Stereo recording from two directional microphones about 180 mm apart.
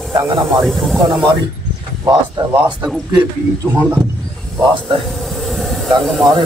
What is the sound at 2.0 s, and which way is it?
Speech, 20° right (ahead or behind).